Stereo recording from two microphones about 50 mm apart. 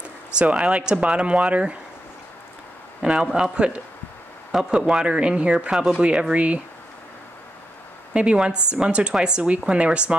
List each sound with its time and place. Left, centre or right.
0.4 s speech: right
3.0 s a man's voice: centre
4.5 s speech: centre
4.7 s speech: centre
8.1 s speech: right